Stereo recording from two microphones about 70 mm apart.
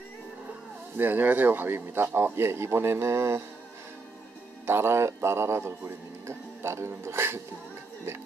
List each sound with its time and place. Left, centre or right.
0.9 s a man's voice: right
4.6 s a man's voice: right